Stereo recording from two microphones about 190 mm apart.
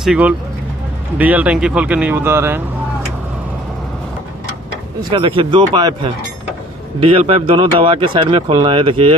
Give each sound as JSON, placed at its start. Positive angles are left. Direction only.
{"t": 0.0, "sound": "speech", "side_deg": -5}
{"t": 5.1, "sound": "speech", "side_deg": -25}